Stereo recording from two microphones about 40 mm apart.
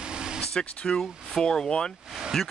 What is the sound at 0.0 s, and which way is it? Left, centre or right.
Vehicle, right.